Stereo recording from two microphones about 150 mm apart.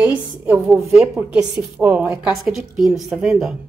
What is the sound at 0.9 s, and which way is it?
A woman's voice, 5° right (ahead or behind).